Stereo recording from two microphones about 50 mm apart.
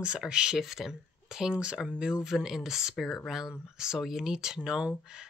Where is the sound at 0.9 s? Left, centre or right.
Centre.